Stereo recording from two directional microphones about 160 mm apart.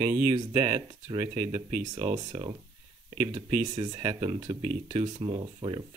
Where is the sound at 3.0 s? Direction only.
45° right (ahead or behind).